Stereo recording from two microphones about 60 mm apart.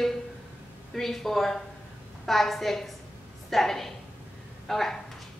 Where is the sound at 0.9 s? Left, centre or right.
Centre.